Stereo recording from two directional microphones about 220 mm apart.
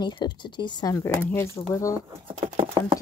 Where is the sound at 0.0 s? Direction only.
20° left (ahead or behind).